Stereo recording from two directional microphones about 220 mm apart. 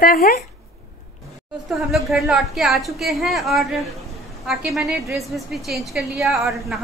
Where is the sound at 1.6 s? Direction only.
Centre (ahead or behind).